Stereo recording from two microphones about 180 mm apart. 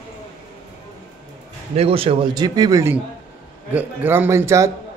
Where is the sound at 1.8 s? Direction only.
30° right (ahead or behind); by 4.6 s 15° right (ahead or behind).